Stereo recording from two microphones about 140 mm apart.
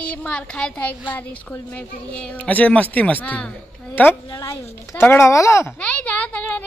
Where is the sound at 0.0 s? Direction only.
10° left (ahead or behind).